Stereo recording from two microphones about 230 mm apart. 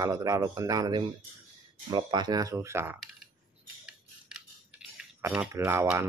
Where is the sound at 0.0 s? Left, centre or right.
Centre.